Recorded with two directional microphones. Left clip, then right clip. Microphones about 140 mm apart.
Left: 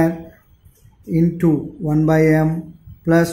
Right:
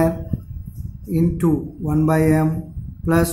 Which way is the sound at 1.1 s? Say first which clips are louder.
Left 2 dB; 15° left (ahead or behind).